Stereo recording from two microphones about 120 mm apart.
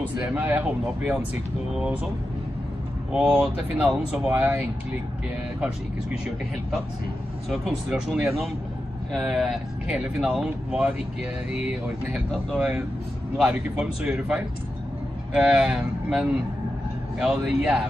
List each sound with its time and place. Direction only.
0.2 s speech: 10° right (ahead or behind)
3.1 s speech: centre (ahead or behind)
7.4 s speech: centre (ahead or behind)